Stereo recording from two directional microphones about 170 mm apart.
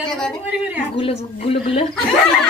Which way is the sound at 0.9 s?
35° left (ahead or behind).